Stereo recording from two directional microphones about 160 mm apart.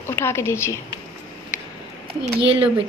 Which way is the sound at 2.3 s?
35° right (ahead or behind).